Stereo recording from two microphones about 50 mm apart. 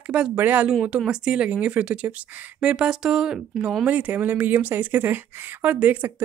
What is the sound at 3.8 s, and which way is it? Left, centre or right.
Speech, right.